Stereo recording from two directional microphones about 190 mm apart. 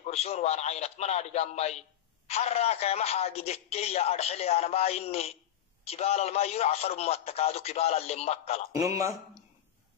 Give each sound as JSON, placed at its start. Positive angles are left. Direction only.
{"t": 0.0, "sound": "a man's voice", "side_deg": 35}
{"t": 8.7, "sound": "speech", "side_deg": -15}